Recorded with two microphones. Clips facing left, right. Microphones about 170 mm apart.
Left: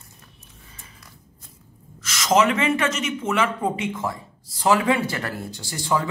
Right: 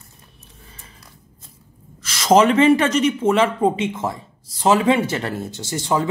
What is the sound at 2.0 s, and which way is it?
Speech, 30° right (ahead or behind).